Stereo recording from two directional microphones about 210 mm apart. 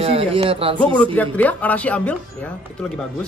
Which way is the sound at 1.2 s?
5° left (ahead or behind).